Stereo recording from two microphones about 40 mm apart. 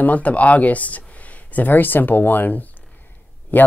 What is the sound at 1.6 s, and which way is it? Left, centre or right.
Speech, left.